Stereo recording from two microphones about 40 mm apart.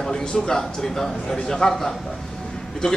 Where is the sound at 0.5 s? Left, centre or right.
Centre.